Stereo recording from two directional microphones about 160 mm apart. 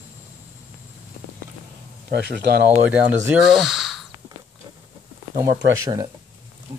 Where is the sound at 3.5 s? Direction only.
Centre (ahead or behind).